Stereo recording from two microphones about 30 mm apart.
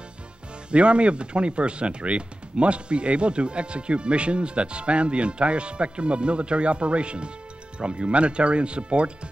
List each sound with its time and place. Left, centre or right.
0.7 s speech: right